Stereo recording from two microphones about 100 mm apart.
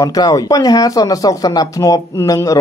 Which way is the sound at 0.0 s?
35° left (ahead or behind).